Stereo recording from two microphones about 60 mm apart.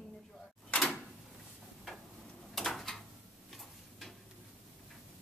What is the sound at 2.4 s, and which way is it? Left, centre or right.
Door, centre.